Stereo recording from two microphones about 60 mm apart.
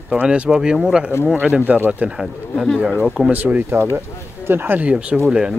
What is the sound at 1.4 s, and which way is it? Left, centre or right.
Speech, right.